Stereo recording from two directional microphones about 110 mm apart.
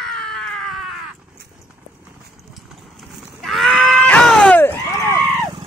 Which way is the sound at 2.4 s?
Centre (ahead or behind).